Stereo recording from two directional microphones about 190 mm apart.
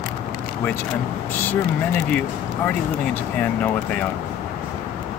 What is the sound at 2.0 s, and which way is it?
Speech, 10° left (ahead or behind).